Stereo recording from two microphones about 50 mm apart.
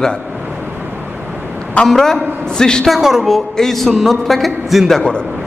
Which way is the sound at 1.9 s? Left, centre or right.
Centre.